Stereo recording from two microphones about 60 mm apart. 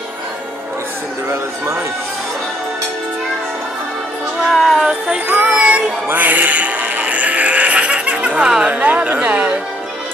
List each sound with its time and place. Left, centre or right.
4.5 s music: centre
4.8 s a sound: centre
6.0 s speech: right